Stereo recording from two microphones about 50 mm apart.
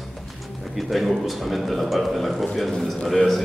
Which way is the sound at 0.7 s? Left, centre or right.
Centre.